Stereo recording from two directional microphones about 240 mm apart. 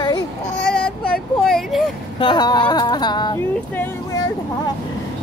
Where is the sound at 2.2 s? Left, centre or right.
Centre.